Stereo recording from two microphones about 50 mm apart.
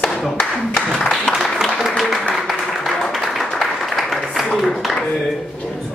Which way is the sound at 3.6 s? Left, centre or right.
Centre.